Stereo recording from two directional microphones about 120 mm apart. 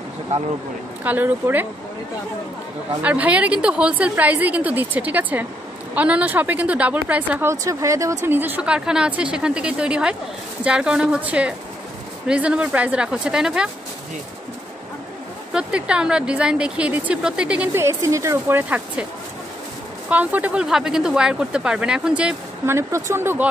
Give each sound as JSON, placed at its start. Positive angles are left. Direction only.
{"t": 1.0, "sound": "a woman's voice", "side_deg": -15}
{"t": 3.0, "sound": "a woman's voice", "side_deg": -10}
{"t": 7.6, "sound": "a woman's voice", "side_deg": -25}
{"t": 15.5, "sound": "a woman's voice", "side_deg": -10}
{"t": 17.7, "sound": "speech", "side_deg": -25}
{"t": 20.1, "sound": "a woman's voice", "side_deg": -15}
{"t": 22.7, "sound": "speech", "side_deg": -25}